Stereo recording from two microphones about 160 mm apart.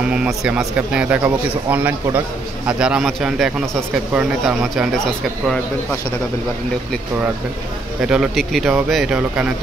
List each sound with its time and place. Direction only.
0.1 s speech: 5° right (ahead or behind)
8.0 s speech: 5° right (ahead or behind)